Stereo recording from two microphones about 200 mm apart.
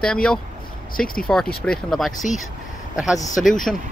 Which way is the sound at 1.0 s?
45° left (ahead or behind).